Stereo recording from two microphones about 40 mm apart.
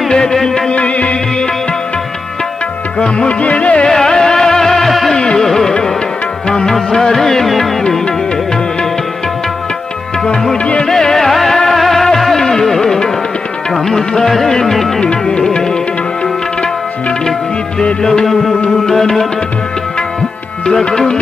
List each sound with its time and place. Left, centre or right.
0.1 s music: centre
0.7 s music: left
3.0 s music: left
3.9 s music: centre
5.1 s music: centre
6.5 s music: centre
10.6 s music: left
10.9 s music: centre
18.2 s music: centre
20.6 s music: centre